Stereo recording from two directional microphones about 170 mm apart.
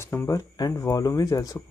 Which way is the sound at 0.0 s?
15° left (ahead or behind).